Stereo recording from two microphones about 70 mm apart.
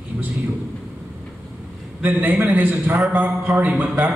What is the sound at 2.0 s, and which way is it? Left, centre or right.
A man's voice, right.